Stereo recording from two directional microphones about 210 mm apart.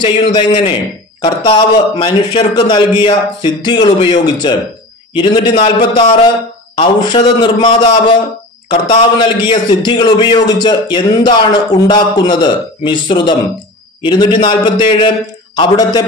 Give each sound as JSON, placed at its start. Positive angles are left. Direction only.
{"t": 0.0, "sound": "a man's voice", "side_deg": 25}